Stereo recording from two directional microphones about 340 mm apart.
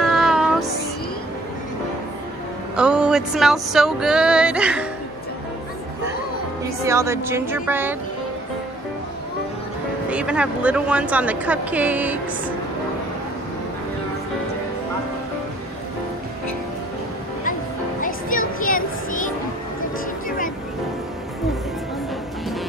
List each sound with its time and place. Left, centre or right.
0.0 s music: centre
2.7 s speech: centre
6.8 s speech: centre
10.0 s speech: centre
18.6 s a sound: left
20.2 s music: left